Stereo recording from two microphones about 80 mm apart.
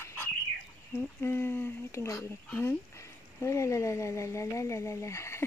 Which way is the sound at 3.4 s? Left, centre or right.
Left.